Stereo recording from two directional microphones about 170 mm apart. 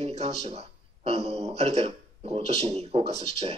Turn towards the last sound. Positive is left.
turn(degrees=-35)  # may be behind; listen again after turning